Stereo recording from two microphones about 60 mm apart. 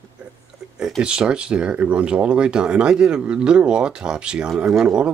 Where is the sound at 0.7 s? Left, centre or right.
Centre.